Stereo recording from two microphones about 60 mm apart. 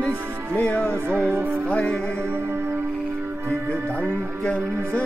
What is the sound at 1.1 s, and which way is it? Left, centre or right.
Music, right.